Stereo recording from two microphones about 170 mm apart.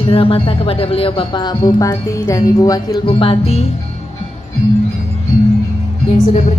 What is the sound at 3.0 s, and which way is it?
Speech, 30° left (ahead or behind).